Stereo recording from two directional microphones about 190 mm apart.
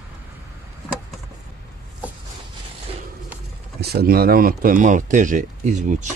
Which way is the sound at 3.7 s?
60° right (ahead or behind).